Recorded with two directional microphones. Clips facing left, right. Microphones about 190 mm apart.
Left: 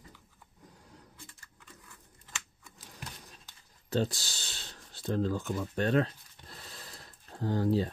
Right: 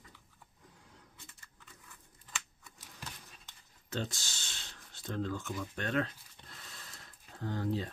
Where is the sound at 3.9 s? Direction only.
35° left (ahead or behind).